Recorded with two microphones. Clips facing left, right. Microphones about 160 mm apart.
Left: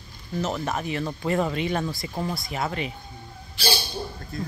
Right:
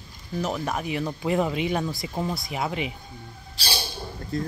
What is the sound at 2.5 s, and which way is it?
Speech, 10° right (ahead or behind).